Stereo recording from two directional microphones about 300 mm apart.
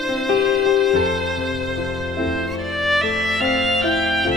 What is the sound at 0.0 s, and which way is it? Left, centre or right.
Music, centre.